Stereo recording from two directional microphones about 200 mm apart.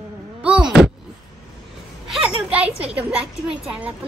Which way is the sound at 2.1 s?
5° right (ahead or behind).